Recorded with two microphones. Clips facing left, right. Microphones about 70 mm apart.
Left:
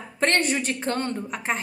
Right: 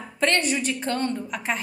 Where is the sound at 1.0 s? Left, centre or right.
Left.